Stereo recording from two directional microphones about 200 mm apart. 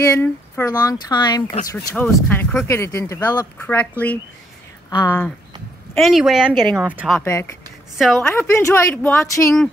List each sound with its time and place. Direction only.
0.0 s speech: 15° left (ahead or behind)
1.7 s speech: 10° left (ahead or behind)
5.9 s speech: centre (ahead or behind)
7.2 s speech: 15° left (ahead or behind)